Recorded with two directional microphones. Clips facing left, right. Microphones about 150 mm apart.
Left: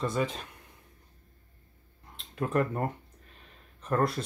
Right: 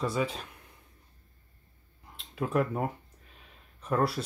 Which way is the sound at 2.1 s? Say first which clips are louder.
Even; centre (ahead or behind).